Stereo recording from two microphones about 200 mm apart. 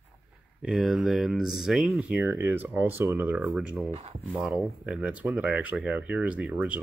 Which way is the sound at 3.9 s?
30° right (ahead or behind).